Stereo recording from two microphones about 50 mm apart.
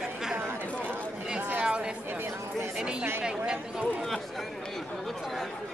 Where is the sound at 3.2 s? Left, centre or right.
Centre.